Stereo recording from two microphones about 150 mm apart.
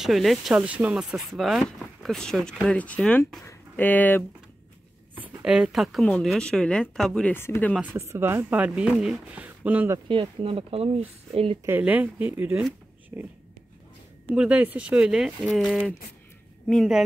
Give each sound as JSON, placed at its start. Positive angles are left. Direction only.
{"t": 0.0, "sound": "speech", "side_deg": 0}
{"t": 5.1, "sound": "speech", "side_deg": -10}
{"t": 7.8, "sound": "speech", "side_deg": -15}
{"t": 10.0, "sound": "speech", "side_deg": -35}
{"t": 11.6, "sound": "speech", "side_deg": -10}